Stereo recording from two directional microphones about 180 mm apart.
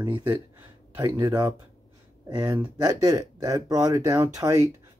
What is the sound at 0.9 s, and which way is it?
Speech, 20° right (ahead or behind).